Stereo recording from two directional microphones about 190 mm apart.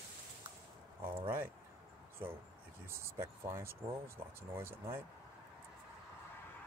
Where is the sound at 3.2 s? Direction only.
15° right (ahead or behind).